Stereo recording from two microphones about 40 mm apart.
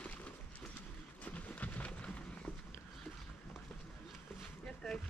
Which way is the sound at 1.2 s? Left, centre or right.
Left.